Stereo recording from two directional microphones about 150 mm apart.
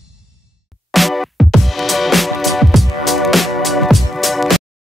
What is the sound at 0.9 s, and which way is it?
Music, centre (ahead or behind).